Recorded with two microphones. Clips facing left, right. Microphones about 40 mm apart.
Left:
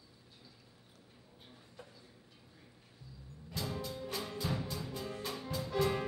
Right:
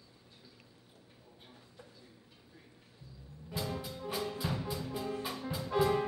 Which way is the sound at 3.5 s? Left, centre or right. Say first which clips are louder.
Right 1 dB; centre.